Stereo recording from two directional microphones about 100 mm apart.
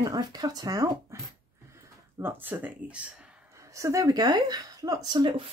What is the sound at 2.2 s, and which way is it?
Speech, 20° right (ahead or behind).